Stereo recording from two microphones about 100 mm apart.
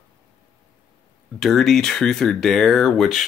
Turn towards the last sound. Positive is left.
turn(degrees=0)  # may be behind; listen again after turning